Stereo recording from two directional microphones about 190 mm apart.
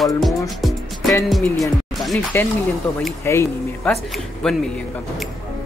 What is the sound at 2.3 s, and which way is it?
Speech, 10° left (ahead or behind).